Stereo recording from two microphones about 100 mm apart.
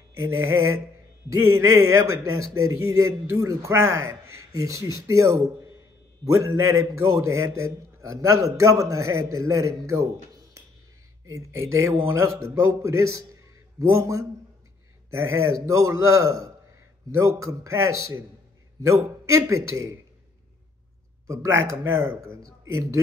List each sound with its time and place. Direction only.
0.2 s a man's voice: 25° right (ahead or behind)
11.2 s a man's voice: 30° right (ahead or behind)
19.2 s a man's voice: 30° right (ahead or behind)
21.3 s a man's voice: 25° right (ahead or behind)